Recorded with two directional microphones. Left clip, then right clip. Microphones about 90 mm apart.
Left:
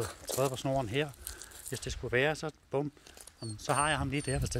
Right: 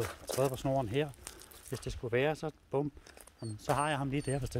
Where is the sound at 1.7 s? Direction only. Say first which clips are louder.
Left 2 dB; 25° right (ahead or behind).